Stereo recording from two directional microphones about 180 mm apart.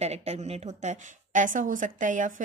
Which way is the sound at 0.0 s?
35° right (ahead or behind).